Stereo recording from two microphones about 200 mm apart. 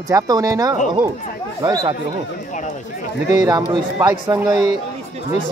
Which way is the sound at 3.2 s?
15° right (ahead or behind).